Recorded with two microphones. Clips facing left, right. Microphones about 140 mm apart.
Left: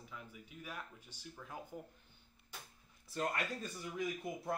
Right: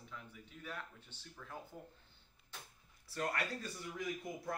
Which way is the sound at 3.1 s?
20° left (ahead or behind).